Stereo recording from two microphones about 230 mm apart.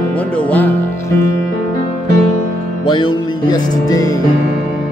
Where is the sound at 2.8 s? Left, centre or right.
Centre.